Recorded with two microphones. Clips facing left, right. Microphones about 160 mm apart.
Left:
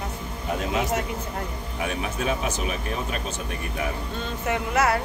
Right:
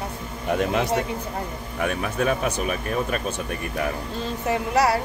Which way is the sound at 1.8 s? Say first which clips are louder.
Right 4 dB; 55° right (ahead or behind).